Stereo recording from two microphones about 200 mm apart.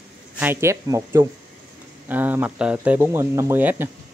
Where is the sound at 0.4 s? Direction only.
10° right (ahead or behind).